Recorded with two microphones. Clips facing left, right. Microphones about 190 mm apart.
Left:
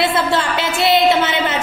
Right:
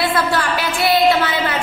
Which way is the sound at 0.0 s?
25° left (ahead or behind).